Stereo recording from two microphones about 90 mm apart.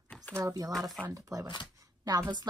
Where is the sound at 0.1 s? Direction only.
10° left (ahead or behind).